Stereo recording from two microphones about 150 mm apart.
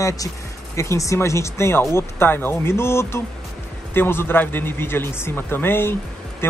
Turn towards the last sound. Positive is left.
turn(degrees=15)  # may be behind; listen again after turning